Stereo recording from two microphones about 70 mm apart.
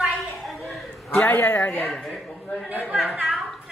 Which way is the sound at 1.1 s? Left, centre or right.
Left.